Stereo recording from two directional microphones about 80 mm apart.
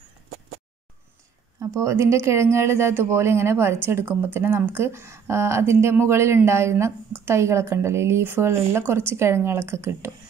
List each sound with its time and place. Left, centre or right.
1.8 s speech: right